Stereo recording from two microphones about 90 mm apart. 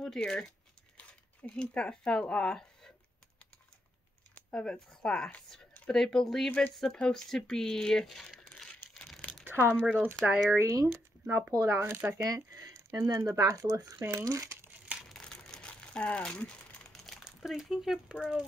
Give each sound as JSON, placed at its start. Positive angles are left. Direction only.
{"t": 0.0, "sound": "speech", "side_deg": 5}
{"t": 4.4, "sound": "speech", "side_deg": 10}
{"t": 8.4, "sound": "crumpling", "side_deg": 5}
{"t": 9.4, "sound": "a sound", "side_deg": -20}
{"t": 10.2, "sound": "speech", "side_deg": -10}
{"t": 10.5, "sound": "speech", "side_deg": -30}
{"t": 11.8, "sound": "speech", "side_deg": -25}
{"t": 12.5, "sound": "squish", "side_deg": -35}
{"t": 13.2, "sound": "speech", "side_deg": -35}
{"t": 15.0, "sound": "crumpling", "side_deg": 5}
{"t": 16.9, "sound": "crumpling", "side_deg": 0}